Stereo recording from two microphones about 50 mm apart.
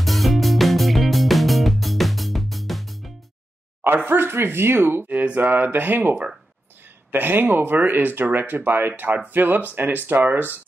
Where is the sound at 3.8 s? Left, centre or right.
Right.